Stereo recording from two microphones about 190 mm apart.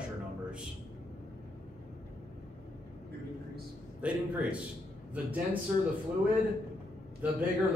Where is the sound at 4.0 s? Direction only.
5° right (ahead or behind).